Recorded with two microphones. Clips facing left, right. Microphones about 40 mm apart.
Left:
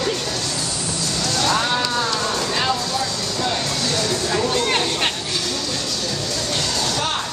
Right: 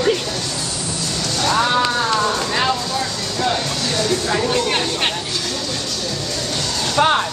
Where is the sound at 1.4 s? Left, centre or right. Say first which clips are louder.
Right 4 dB; centre.